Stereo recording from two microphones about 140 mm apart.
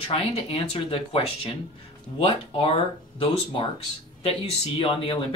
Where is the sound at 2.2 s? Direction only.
40° left (ahead or behind).